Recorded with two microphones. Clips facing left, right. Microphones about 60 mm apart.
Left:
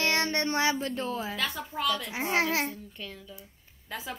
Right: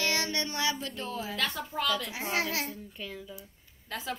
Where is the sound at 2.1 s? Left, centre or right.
Left.